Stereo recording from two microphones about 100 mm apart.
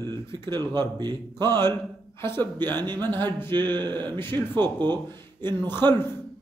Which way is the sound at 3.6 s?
45° right (ahead or behind).